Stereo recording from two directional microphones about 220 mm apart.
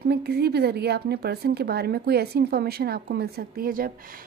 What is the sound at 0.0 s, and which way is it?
Speech, 45° right (ahead or behind).